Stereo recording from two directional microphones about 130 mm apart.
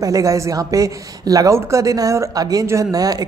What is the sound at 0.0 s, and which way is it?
Speech, 25° right (ahead or behind).